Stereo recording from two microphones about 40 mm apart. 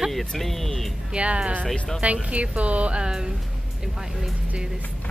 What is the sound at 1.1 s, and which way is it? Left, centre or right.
Speech, right.